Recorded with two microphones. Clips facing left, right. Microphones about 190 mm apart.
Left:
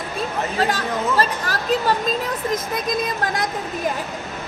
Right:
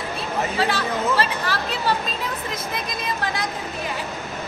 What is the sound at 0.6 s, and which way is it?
Speech, 45° left (ahead or behind).